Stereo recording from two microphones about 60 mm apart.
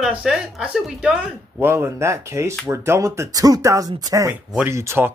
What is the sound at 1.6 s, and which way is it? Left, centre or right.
Speech, right.